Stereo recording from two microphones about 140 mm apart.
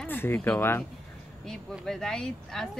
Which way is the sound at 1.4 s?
Centre (ahead or behind).